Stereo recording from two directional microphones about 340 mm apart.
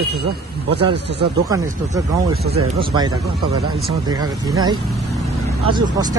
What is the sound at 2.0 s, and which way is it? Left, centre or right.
Speech, centre.